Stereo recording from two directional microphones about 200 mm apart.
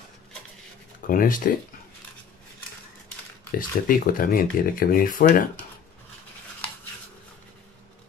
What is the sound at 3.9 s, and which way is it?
Speech, 45° left (ahead or behind).